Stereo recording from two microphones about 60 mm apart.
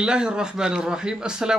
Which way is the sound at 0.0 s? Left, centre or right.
Centre.